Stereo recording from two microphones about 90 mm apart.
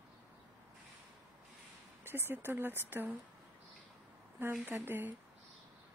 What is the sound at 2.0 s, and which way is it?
Speech, 25° right (ahead or behind).